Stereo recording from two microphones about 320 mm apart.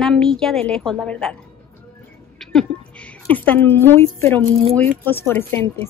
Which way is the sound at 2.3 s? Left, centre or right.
Centre.